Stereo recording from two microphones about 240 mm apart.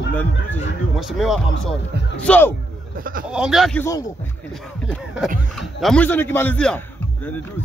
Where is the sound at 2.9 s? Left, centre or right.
Right.